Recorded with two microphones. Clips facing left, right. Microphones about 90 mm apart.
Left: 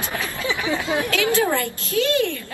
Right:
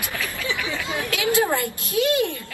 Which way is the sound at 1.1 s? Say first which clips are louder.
Right 1 dB; 20° right (ahead or behind).